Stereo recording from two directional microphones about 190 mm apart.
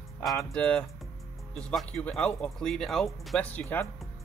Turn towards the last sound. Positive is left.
turn(degrees=10)  # may be behind; listen again after turning